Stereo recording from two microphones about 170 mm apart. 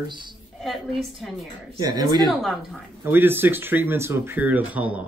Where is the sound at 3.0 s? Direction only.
10° right (ahead or behind).